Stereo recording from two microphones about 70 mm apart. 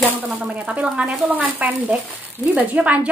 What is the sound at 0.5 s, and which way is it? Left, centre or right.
A woman's voice, centre.